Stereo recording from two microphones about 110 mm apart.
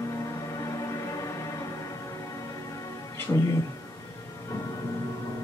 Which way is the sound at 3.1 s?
30° left (ahead or behind).